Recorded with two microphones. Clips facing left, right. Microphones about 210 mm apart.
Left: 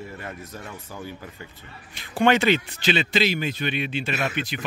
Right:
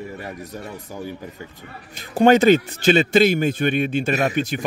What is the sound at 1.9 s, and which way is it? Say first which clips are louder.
A man's voice: right 6 dB; 40° right (ahead or behind).